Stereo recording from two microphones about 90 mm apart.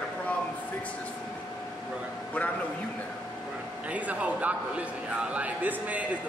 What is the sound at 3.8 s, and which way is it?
Speech, 15° right (ahead or behind).